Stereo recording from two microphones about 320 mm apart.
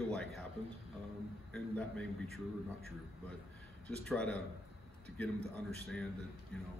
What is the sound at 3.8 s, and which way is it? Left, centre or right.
Speech, centre.